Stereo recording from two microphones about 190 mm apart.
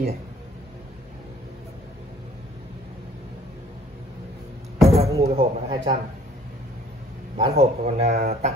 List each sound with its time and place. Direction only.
4.8 s a sound: 20° right (ahead or behind)
5.3 s a man's voice: 30° right (ahead or behind)
7.3 s speech: 30° right (ahead or behind)